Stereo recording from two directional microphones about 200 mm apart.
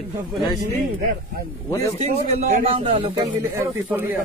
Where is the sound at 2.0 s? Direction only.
35° right (ahead or behind); by 4.1 s 10° right (ahead or behind).